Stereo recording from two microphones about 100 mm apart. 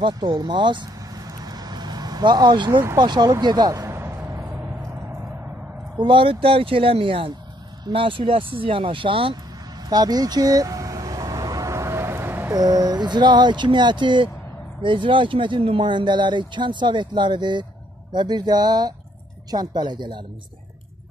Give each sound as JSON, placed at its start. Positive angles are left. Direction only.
{"t": 0.0, "sound": "vehicle", "side_deg": -50}
{"t": 2.7, "sound": "speech", "side_deg": -20}
{"t": 3.0, "sound": "speech", "side_deg": -50}
{"t": 3.3, "sound": "a sound", "side_deg": -45}
{"t": 5.9, "sound": "speech", "side_deg": -55}
{"t": 9.8, "sound": "vehicle", "side_deg": -40}
{"t": 12.5, "sound": "speech", "side_deg": -40}